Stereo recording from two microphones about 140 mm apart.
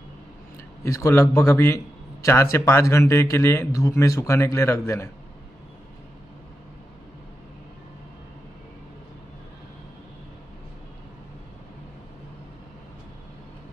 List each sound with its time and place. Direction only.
0.8 s speech: 20° left (ahead or behind)